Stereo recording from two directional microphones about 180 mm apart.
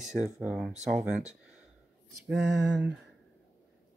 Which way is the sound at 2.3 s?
70° right (ahead or behind).